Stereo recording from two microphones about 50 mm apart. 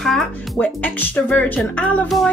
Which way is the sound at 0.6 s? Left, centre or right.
Left.